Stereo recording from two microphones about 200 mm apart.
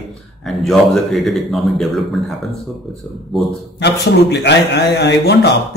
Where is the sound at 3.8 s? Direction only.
60° left (ahead or behind).